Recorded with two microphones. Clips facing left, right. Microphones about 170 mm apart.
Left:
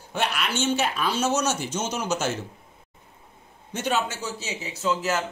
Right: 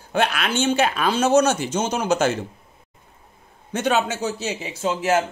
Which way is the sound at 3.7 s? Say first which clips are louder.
Right 5 dB; 65° right (ahead or behind).